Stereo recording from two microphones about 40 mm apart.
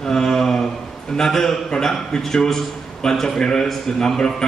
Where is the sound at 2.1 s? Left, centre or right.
Centre.